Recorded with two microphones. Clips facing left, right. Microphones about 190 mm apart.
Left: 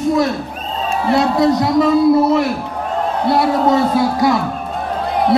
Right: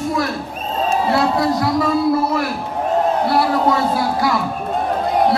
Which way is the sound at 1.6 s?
20° left (ahead or behind).